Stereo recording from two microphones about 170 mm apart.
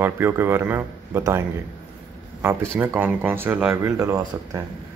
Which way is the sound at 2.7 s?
10° right (ahead or behind).